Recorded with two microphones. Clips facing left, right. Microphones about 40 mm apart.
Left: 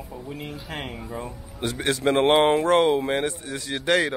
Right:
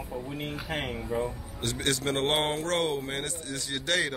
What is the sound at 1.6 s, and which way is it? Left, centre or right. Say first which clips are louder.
Speech: left 5 dB; centre.